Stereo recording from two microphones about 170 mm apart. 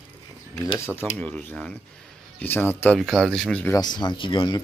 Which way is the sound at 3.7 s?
25° left (ahead or behind).